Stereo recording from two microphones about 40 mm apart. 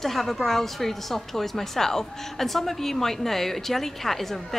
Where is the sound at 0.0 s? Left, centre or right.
Centre.